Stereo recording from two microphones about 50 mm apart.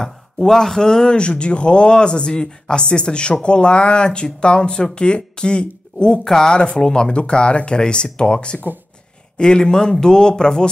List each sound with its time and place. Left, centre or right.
0.0 s speech: centre